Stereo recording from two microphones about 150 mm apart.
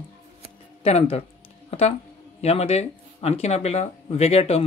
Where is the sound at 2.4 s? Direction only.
45° left (ahead or behind).